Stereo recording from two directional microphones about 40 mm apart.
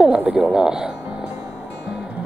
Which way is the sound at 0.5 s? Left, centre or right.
Centre.